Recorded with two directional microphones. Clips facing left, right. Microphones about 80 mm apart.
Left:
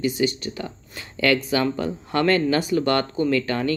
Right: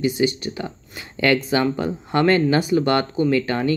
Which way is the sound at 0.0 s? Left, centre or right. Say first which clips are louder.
Right 2 dB; right.